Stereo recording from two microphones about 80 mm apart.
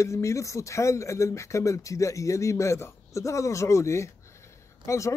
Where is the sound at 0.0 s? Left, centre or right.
Left.